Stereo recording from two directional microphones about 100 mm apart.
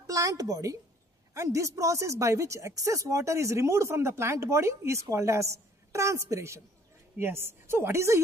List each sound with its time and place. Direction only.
0.0 s a woman's voice: 35° right (ahead or behind)